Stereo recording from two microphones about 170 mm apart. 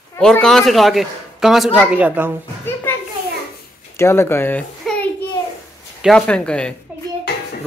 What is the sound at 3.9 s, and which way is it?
A man's voice, 15° left (ahead or behind).